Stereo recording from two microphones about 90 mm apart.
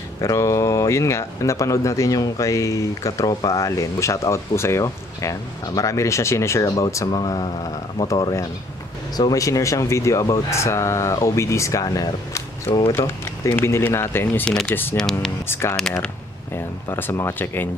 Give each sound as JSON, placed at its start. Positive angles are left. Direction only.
{"t": 0.2, "sound": "speech", "side_deg": 35}
{"t": 7.1, "sound": "speech", "side_deg": 55}
{"t": 8.1, "sound": "speech", "side_deg": 40}
{"t": 13.6, "sound": "speech", "side_deg": 25}
{"t": 14.4, "sound": "speech", "side_deg": 10}
{"t": 15.4, "sound": "speech", "side_deg": 25}